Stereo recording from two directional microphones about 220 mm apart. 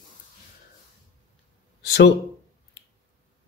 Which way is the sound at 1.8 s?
50° left (ahead or behind).